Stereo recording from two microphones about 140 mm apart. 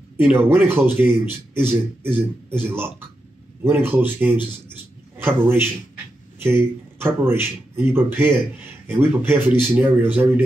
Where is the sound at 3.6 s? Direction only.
15° right (ahead or behind).